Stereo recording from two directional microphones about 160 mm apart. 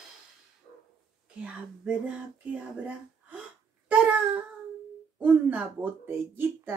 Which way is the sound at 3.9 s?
10° right (ahead or behind).